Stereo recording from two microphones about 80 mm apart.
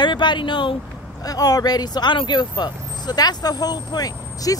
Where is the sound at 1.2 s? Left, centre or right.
Left.